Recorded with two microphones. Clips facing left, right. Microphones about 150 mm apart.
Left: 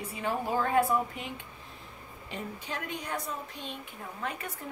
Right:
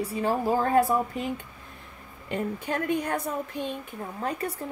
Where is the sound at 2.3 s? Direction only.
55° right (ahead or behind).